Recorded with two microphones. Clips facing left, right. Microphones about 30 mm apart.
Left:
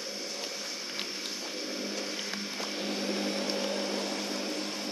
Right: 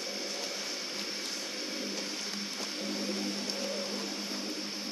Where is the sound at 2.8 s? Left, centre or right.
Left.